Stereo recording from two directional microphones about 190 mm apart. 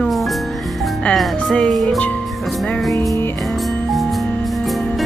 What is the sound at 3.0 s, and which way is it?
Music, 15° left (ahead or behind).